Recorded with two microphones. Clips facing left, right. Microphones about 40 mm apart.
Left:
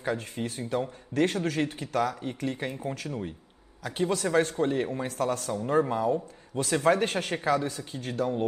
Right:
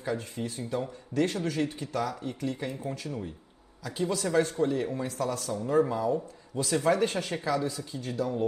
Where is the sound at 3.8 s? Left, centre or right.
Left.